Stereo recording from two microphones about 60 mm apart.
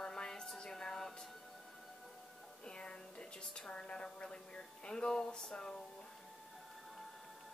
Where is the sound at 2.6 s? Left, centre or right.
Centre.